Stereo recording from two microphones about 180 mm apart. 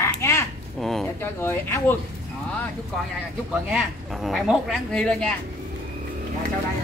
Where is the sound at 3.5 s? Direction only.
Centre (ahead or behind).